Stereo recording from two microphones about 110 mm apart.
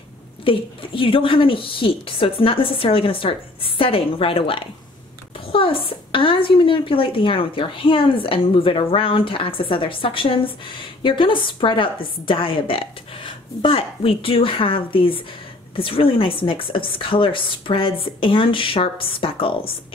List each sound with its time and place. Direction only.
0.5 s a woman's voice: 50° left (ahead or behind)